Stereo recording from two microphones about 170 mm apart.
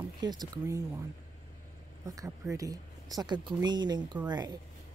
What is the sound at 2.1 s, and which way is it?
Speech, 20° right (ahead or behind).